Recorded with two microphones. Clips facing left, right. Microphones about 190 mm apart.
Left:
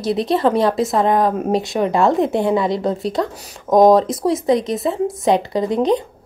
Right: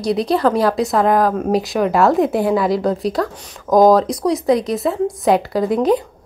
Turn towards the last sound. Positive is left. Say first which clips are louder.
# right 1 dB
turn(degrees=-5)  # may be behind; listen again after turning